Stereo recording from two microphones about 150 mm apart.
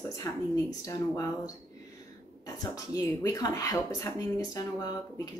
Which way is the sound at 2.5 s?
25° left (ahead or behind).